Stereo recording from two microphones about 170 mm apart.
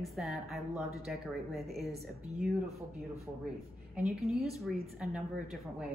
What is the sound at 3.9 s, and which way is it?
Speech, centre (ahead or behind).